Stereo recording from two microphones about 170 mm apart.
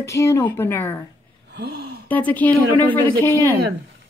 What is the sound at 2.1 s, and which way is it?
Speech, 10° left (ahead or behind).